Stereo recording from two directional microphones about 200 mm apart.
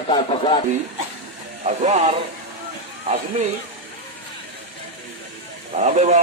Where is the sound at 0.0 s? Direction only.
25° left (ahead or behind).